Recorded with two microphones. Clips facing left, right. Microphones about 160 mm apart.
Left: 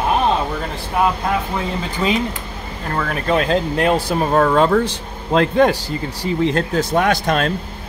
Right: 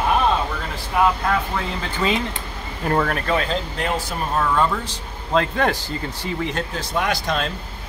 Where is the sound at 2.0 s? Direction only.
15° left (ahead or behind).